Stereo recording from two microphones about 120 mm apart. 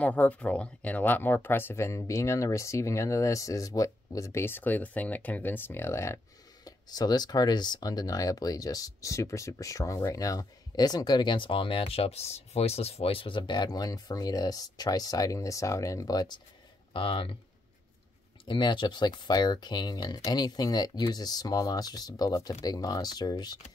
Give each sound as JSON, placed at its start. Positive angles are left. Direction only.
{"t": 0.0, "sound": "speech", "side_deg": 10}
{"t": 16.9, "sound": "speech", "side_deg": 45}
{"t": 18.4, "sound": "speech", "side_deg": 40}